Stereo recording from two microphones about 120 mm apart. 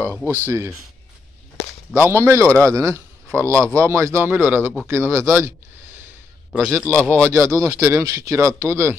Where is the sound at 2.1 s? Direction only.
20° right (ahead or behind).